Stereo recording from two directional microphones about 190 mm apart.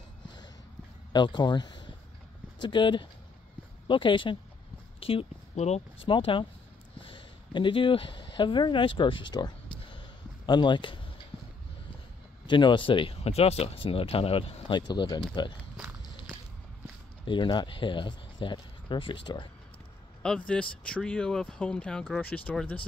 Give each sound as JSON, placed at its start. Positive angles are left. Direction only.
{"t": 1.1, "sound": "speech", "side_deg": 25}
{"t": 7.0, "sound": "a sound", "side_deg": 25}
{"t": 12.4, "sound": "speech", "side_deg": 25}
{"t": 17.3, "sound": "speech", "side_deg": 25}
{"t": 20.2, "sound": "speech", "side_deg": 5}